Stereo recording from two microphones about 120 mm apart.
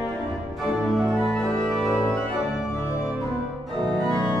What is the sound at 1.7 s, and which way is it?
Music, centre (ahead or behind).